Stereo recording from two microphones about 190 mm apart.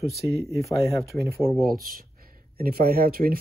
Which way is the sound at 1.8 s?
50° right (ahead or behind).